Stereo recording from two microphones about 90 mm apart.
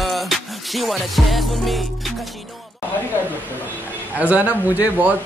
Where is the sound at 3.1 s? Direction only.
20° right (ahead or behind).